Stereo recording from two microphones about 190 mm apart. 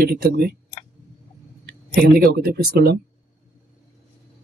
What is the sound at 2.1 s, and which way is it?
Speech, 55° right (ahead or behind).